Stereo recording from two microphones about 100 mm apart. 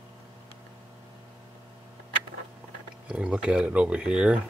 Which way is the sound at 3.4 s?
10° right (ahead or behind).